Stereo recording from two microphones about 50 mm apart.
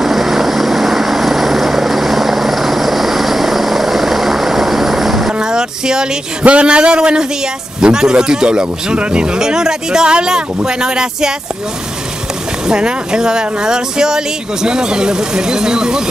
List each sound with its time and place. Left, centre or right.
0.0 s vehicle: centre
6.4 s a man's voice: right
12.6 s speech: centre